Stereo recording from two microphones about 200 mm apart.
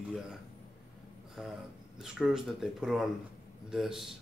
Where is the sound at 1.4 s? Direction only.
5° right (ahead or behind).